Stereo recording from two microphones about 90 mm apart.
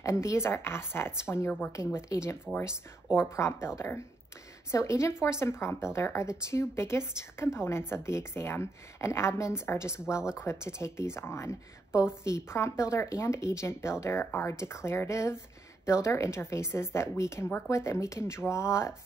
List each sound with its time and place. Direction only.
0.0 s a woman's voice: 35° left (ahead or behind)